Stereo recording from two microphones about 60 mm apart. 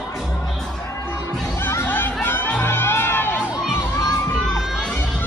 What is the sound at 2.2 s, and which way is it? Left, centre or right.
Music, left.